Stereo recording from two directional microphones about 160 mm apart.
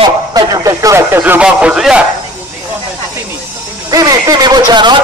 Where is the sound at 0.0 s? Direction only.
25° right (ahead or behind); by 2.0 s 5° right (ahead or behind).